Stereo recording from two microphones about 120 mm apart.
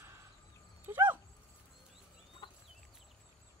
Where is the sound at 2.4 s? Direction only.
40° left (ahead or behind).